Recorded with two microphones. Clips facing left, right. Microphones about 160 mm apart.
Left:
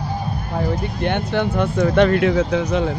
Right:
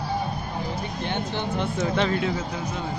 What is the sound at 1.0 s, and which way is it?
Speech, 60° left (ahead or behind).